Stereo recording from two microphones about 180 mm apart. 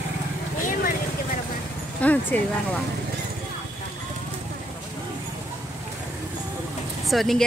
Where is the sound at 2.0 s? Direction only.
10° left (ahead or behind).